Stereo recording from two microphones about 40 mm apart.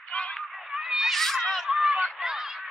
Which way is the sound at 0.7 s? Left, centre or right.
Centre.